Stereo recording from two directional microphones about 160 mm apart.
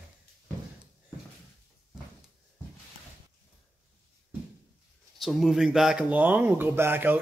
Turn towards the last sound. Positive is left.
turn(degrees=-15)  # may be behind; listen again after turning